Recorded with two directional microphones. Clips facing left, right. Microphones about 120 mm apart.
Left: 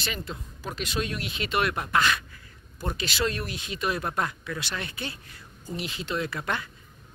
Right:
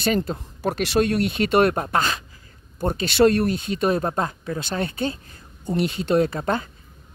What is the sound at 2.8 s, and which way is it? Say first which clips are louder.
Speech: right 11 dB; 55° right (ahead or behind).